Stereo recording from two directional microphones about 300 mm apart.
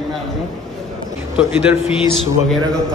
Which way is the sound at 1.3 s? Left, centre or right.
Centre.